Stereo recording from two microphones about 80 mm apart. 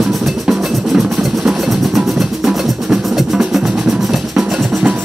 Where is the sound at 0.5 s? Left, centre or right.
Centre.